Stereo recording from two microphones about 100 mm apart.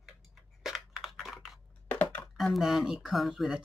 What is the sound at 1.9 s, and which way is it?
Computer keyboard, 15° left (ahead or behind).